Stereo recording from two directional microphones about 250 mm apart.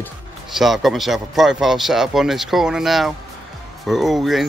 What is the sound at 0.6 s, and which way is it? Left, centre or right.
Speech, centre.